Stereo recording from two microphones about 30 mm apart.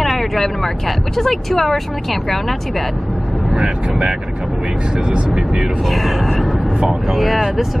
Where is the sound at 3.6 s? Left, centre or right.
Right.